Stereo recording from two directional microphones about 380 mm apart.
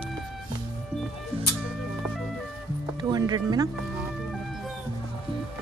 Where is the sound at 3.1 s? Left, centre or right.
Centre.